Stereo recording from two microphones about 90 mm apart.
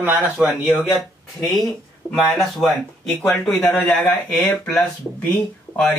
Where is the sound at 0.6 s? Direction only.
Centre (ahead or behind).